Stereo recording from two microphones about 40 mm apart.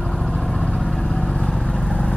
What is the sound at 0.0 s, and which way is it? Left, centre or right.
Vehicle, centre.